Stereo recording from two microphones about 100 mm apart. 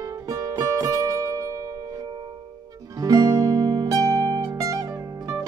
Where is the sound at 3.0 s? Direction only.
35° right (ahead or behind).